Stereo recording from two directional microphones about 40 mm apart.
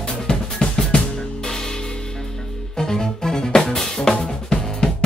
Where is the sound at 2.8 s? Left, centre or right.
Centre.